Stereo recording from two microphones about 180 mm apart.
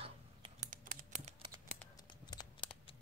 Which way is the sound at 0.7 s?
45° right (ahead or behind).